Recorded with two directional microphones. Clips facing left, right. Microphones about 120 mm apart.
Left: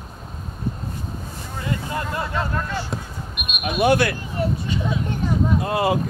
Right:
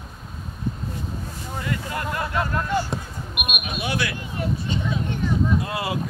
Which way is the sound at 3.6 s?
50° left (ahead or behind).